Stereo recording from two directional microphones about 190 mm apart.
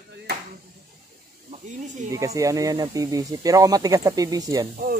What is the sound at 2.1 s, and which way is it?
Speech, 15° right (ahead or behind).